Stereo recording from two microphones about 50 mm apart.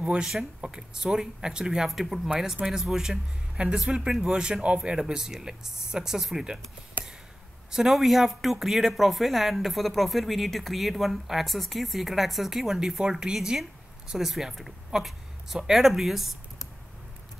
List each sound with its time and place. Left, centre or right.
0.0 s speech: right
1.9 s speech: centre
7.7 s speech: centre